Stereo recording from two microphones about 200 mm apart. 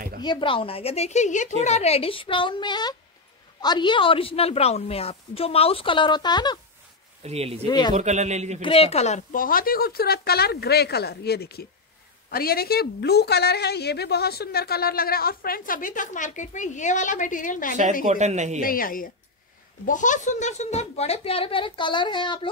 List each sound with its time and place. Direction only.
0.2 s a woman's voice: 25° left (ahead or behind)
7.2 s a man's voice: 30° right (ahead or behind)
7.6 s a woman's voice: 20° left (ahead or behind)
7.9 s a man's voice: 35° right (ahead or behind)
8.6 s a woman's voice: 30° left (ahead or behind)
18.0 s a man's voice: 35° right (ahead or behind)
18.6 s a woman's voice: 45° left (ahead or behind); by 22.5 s 25° left (ahead or behind)